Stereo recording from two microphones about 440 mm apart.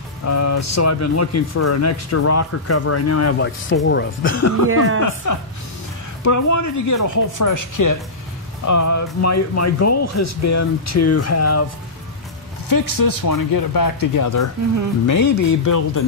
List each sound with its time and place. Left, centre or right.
0.3 s speech: left
4.6 s speech: right
5.0 s speech: left
12.6 s speech: left